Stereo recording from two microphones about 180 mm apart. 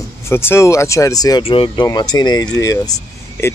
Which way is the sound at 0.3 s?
15° left (ahead or behind).